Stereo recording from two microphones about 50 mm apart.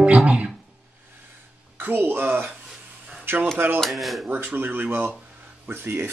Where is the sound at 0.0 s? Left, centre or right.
Right.